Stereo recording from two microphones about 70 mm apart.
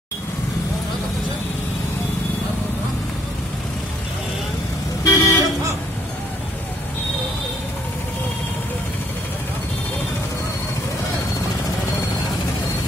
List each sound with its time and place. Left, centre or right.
5.0 s vehicle: left